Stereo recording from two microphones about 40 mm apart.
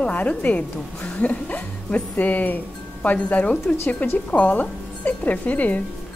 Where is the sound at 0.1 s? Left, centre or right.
Left.